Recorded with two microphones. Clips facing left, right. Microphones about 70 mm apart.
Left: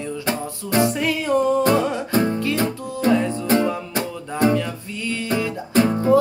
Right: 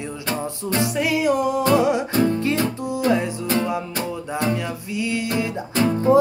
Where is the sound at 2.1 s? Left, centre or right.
Left.